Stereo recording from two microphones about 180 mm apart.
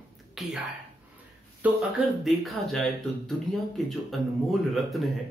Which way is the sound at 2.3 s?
Centre (ahead or behind).